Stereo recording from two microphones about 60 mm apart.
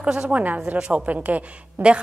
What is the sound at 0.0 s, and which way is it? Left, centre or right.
A woman's voice, centre.